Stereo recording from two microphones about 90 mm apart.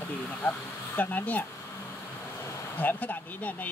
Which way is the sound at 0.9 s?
20° left (ahead or behind).